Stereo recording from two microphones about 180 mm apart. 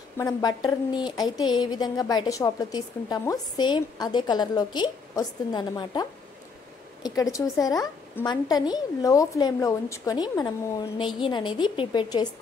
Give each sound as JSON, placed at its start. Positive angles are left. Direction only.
{"t": 0.2, "sound": "a woman's voice", "side_deg": 20}